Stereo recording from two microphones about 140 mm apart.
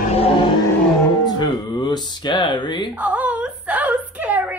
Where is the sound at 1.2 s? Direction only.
30° left (ahead or behind).